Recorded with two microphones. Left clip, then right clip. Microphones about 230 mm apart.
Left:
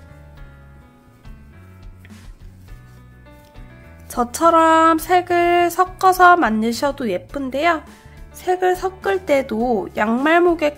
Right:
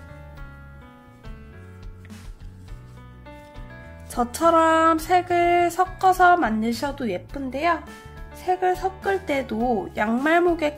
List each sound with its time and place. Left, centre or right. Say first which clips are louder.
4.1 s music: left 4 dB; centre